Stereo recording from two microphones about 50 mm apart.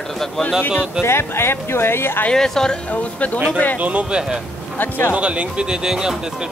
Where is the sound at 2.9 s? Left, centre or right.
Left.